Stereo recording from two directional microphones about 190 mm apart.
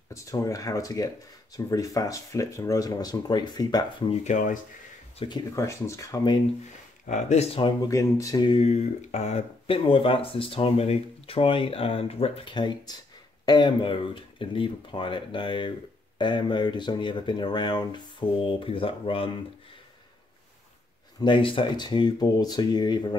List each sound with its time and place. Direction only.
0.1 s speech: 15° left (ahead or behind)
4.1 s speech: 40° left (ahead or behind)
5.2 s speech: 20° left (ahead or behind)
7.1 s speech: 35° left (ahead or behind)
7.9 s speech: 15° left (ahead or behind)
21.2 s speech: 25° left (ahead or behind)